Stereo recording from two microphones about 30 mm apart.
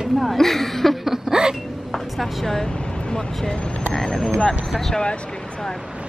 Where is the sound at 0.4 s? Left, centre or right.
Centre.